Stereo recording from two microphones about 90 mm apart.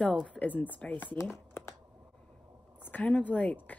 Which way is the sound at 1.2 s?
25° left (ahead or behind).